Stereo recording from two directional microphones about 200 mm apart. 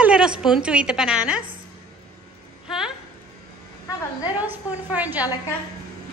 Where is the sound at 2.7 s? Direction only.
5° right (ahead or behind).